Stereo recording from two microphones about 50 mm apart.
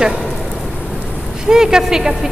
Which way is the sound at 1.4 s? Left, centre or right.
Centre.